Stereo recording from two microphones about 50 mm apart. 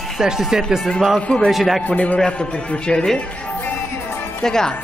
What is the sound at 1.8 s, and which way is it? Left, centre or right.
A man's voice, left.